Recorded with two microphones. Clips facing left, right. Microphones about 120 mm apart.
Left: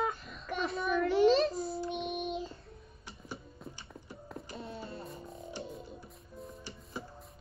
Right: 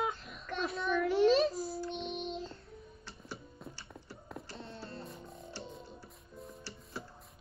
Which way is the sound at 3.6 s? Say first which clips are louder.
Left 1 dB; centre (ahead or behind).